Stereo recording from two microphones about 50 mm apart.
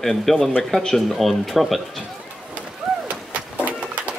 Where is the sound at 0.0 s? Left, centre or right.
Centre.